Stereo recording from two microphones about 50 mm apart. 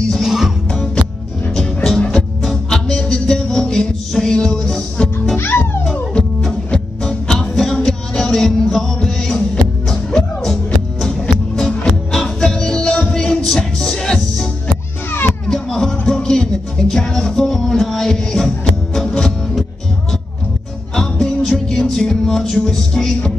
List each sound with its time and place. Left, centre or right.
0.2 s music: centre
1.5 s music: centre
5.4 s music: left
6.1 s music: centre
15.0 s children playing: left
15.4 s music: centre
20.9 s music: centre